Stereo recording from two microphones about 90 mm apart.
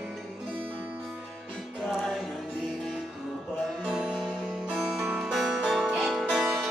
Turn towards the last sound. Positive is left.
turn(degrees=0)  # may be behind; listen again after turning